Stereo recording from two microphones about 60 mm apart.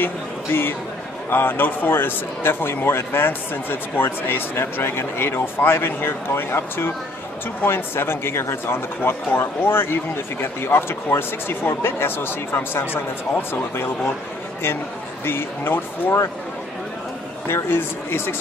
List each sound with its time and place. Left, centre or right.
0.0 s speech: left
15.2 s speech: left
17.5 s speech: left